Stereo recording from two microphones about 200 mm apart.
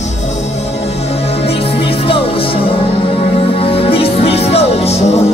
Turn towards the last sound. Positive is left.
turn(degrees=30)  # may be behind; listen again after turning